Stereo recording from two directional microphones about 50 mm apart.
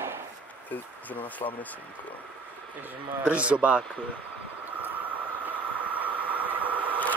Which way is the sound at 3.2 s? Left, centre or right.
Right.